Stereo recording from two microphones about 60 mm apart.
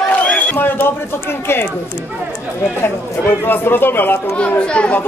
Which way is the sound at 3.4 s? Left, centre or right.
Left.